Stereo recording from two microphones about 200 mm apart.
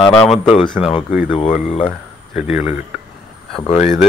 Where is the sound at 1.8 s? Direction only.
Centre (ahead or behind).